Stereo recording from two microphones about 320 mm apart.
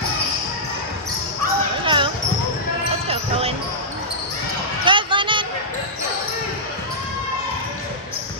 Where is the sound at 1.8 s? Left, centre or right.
Centre.